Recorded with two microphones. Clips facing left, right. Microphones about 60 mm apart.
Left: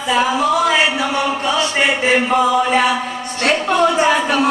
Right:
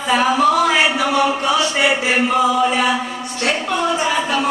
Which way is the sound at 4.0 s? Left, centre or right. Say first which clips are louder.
Left 4 dB; left.